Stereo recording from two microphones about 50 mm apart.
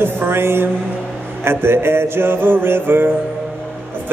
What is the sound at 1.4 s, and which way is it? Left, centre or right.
Mantra, right.